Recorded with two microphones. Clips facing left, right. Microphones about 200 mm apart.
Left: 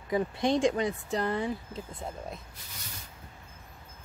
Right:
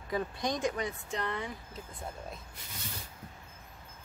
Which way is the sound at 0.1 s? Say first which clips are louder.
Left 6 dB; 25° left (ahead or behind).